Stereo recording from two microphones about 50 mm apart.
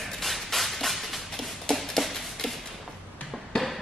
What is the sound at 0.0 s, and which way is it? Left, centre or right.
Music, centre.